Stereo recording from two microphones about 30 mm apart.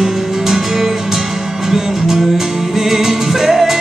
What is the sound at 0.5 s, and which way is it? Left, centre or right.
Music, centre.